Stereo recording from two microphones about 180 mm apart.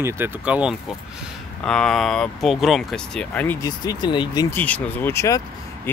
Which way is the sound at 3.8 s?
25° left (ahead or behind).